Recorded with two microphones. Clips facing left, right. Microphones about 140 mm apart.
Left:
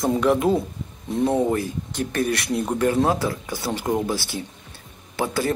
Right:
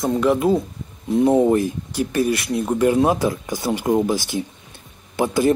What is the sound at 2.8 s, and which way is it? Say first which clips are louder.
Speech: right 4 dB; 15° right (ahead or behind).